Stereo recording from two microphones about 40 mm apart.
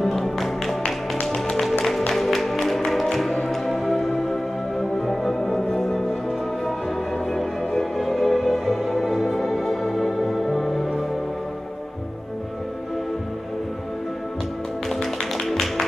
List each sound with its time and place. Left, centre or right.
0.0 s music: centre
2.1 s music: centre
7.2 s music: centre
14.9 s music: centre